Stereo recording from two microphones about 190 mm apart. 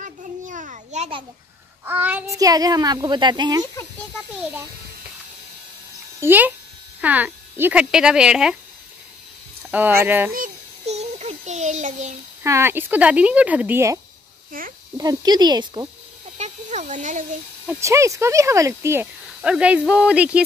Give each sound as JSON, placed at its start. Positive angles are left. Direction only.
{"t": 0.0, "sound": "children playing", "side_deg": -40}
{"t": 1.9, "sound": "a child's voice", "side_deg": -10}
{"t": 6.2, "sound": "speech", "side_deg": -10}
{"t": 9.7, "sound": "speech", "side_deg": -10}
{"t": 10.3, "sound": "child singing", "side_deg": -40}
{"t": 12.4, "sound": "speech", "side_deg": -15}
{"t": 15.0, "sound": "a child's voice", "side_deg": -20}
{"t": 16.3, "sound": "a sound", "side_deg": -40}
{"t": 17.6, "sound": "speech", "side_deg": -15}